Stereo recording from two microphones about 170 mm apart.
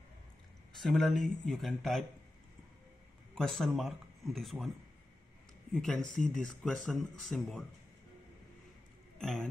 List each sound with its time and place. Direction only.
0.7 s speech: centre (ahead or behind)
3.3 s speech: centre (ahead or behind)
5.7 s speech: 5° left (ahead or behind)
9.2 s speech: centre (ahead or behind)